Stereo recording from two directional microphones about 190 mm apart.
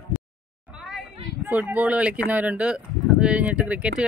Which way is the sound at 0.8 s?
5° right (ahead or behind).